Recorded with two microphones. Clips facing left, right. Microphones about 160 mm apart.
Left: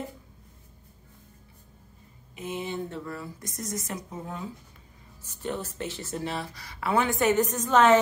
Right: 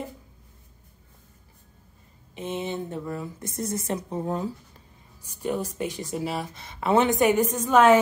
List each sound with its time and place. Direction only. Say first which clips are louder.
2.3 s speech: right 3 dB; 25° right (ahead or behind)
5.2 s a woman's voice: right 5 dB; 10° right (ahead or behind)
6.5 s a woman's voice: right 5 dB; 20° right (ahead or behind)